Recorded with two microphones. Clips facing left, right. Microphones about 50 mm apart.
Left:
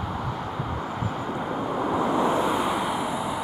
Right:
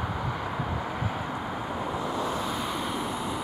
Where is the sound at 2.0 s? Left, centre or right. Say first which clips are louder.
Left 9 dB; left.